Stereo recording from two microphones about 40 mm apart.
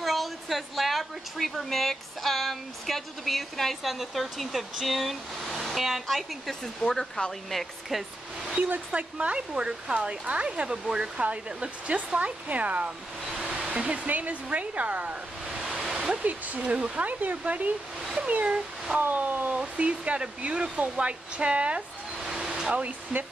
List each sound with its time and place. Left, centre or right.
0.0 s a woman's voice: centre
6.9 s speech: centre
7.9 s speech: centre
8.9 s speech: right
9.5 s speech: centre
11.2 s speech: right
13.4 s hair dryer: right
14.0 s speech: right
15.6 s waterfall: centre
16.0 s speech: right
17.0 s speech: right
19.6 s speech: right
22.2 s a sound: centre
22.8 s speech: right